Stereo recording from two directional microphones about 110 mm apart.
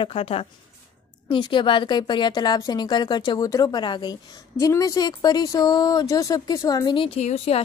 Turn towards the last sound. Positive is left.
turn(degrees=65)  # may be behind; listen again after turning